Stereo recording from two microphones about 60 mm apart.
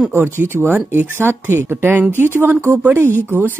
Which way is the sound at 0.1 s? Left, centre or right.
Right.